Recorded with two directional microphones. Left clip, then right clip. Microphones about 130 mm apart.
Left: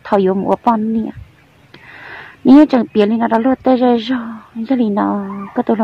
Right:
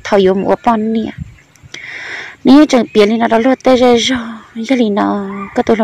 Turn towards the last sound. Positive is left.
turn(degrees=-10)  # may be behind; listen again after turning